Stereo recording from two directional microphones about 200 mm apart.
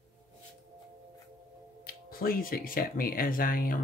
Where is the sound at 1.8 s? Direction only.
45° left (ahead or behind).